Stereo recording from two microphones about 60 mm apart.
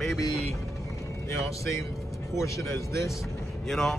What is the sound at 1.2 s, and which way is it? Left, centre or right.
Speech, left.